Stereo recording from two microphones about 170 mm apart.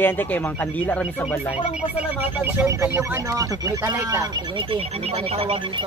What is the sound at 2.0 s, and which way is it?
Speech, 10° right (ahead or behind).